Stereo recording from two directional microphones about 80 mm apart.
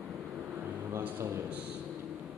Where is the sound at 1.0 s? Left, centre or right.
Right.